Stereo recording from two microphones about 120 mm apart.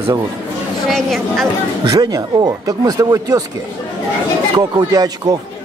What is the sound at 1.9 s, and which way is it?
Speech, 30° right (ahead or behind).